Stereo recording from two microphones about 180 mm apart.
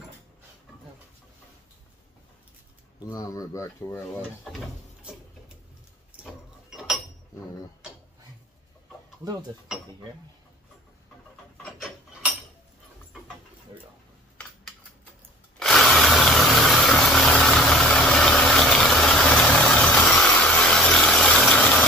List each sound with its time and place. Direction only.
3.1 s speech: 20° left (ahead or behind)
6.2 s vehicle: centre (ahead or behind)
15.6 s engine: centre (ahead or behind)